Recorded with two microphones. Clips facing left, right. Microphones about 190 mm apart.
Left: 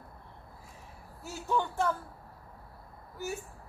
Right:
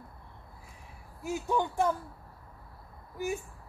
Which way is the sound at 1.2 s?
15° right (ahead or behind).